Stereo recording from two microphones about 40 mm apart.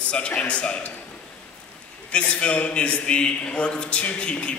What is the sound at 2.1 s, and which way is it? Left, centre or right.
A man's voice, left.